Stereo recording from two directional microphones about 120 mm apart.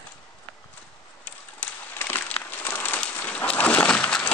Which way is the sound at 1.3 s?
10° left (ahead or behind).